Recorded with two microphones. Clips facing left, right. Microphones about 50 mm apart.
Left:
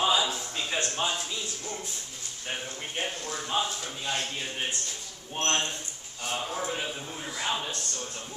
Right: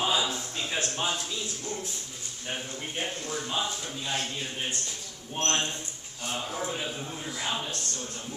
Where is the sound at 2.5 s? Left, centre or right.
Centre.